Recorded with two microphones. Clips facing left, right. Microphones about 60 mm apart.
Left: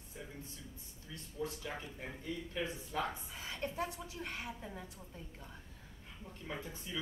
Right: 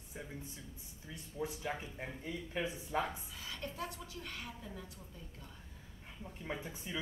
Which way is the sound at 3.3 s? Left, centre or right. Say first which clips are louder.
Left 4 dB; left.